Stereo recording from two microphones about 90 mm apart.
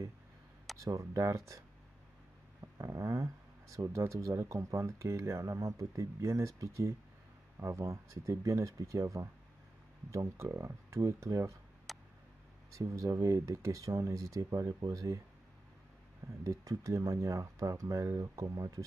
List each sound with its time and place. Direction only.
0.8 s speech: 35° right (ahead or behind)
2.6 s a sound: 35° right (ahead or behind)
3.7 s speech: 35° right (ahead or behind)
11.9 s tick: centre (ahead or behind)
12.7 s speech: 35° right (ahead or behind)
16.4 s speech: 35° right (ahead or behind)